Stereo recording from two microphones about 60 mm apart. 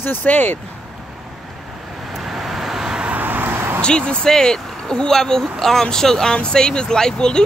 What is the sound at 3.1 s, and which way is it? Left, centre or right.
Vehicle, right.